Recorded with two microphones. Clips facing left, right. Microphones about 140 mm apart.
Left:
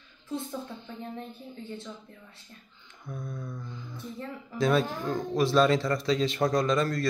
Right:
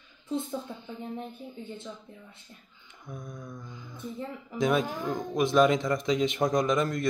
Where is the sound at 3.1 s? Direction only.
15° right (ahead or behind).